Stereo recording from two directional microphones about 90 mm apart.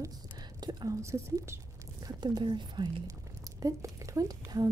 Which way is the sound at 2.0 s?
50° right (ahead or behind).